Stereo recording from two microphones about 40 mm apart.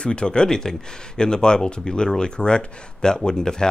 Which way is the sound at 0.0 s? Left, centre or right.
Left.